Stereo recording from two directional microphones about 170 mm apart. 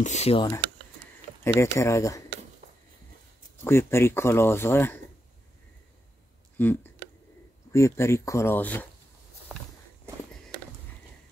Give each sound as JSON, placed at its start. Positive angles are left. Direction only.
{"t": 0.0, "sound": "speech", "side_deg": 40}
{"t": 1.4, "sound": "speech", "side_deg": 15}
{"t": 3.6, "sound": "speech", "side_deg": 15}
{"t": 6.5, "sound": "speech", "side_deg": 10}
{"t": 9.5, "sound": "walk", "side_deg": -5}